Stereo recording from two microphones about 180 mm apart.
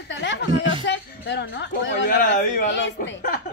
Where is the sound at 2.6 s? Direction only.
75° left (ahead or behind).